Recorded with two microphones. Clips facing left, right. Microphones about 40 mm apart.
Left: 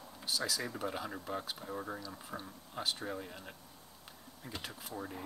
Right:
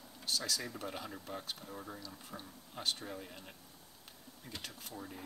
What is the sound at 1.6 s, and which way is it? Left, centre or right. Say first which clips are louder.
Speech: left 6 dB; left.